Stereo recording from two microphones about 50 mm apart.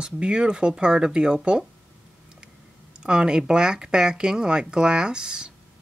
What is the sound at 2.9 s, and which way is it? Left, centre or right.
Speech, centre.